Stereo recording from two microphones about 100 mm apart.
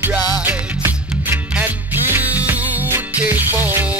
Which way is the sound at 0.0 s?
20° right (ahead or behind).